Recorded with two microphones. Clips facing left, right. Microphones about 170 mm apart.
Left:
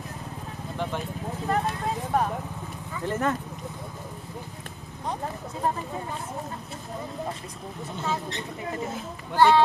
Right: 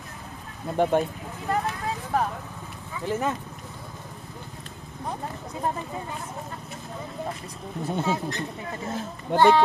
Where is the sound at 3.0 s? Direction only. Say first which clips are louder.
Even; 5° right (ahead or behind).